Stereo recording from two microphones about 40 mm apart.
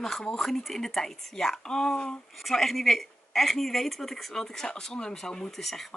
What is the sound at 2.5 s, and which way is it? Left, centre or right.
Speech, centre.